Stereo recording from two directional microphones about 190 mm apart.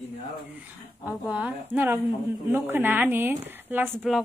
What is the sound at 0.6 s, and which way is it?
A woman's voice, 5° right (ahead or behind).